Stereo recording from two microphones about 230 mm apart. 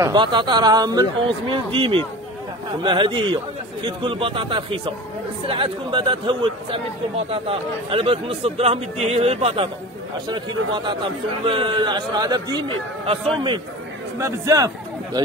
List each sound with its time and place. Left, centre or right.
0.0 s a man's voice: centre